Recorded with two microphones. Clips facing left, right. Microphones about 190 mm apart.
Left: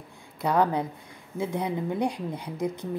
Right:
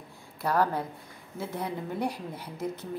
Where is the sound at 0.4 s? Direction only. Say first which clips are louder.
Left 3 dB; 20° left (ahead or behind).